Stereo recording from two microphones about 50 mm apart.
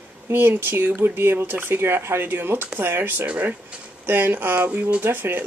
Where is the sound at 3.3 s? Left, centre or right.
Right.